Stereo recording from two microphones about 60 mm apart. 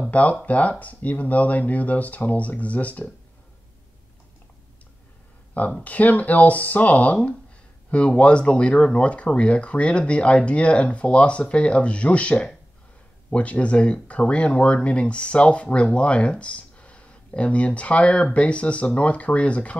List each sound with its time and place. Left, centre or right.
0.1 s speech: left
5.5 s speech: left